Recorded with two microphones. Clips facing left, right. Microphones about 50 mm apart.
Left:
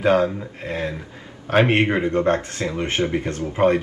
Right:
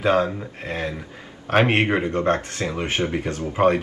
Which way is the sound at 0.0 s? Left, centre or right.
Right.